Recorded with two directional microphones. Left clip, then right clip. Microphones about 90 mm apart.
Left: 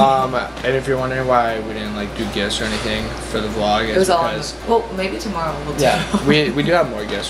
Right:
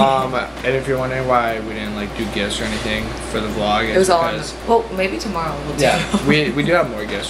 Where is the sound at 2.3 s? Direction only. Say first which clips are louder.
Left 2 dB; 15° left (ahead or behind).